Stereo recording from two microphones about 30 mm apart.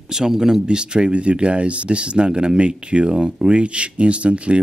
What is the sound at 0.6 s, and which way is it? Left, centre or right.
Speech, right.